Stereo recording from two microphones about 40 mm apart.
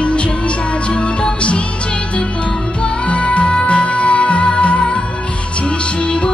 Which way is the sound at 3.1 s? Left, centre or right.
Left.